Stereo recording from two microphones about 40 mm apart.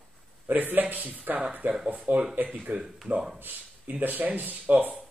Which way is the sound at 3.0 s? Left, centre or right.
Right.